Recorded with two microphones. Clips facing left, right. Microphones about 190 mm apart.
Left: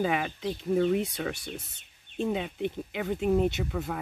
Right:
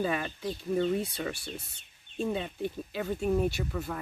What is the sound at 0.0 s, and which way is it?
Speech, 90° left.